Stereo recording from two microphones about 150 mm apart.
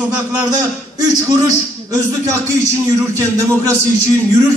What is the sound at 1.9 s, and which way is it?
A man's voice, 20° right (ahead or behind).